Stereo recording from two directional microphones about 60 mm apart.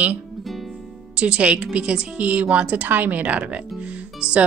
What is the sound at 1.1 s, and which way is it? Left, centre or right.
Speech, right.